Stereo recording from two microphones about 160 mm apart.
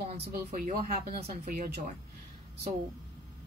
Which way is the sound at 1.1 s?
40° right (ahead or behind).